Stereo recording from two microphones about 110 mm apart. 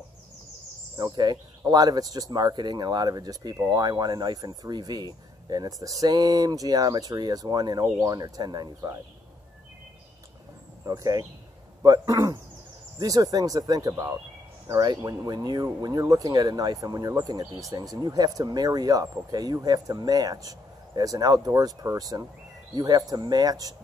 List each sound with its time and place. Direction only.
0.9 s speech: 35° right (ahead or behind)
10.9 s speech: 35° right (ahead or behind)